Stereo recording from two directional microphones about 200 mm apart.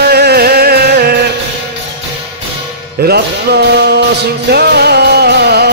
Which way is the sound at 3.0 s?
55° right (ahead or behind).